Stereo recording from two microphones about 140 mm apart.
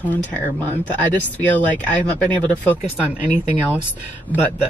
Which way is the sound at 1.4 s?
10° left (ahead or behind).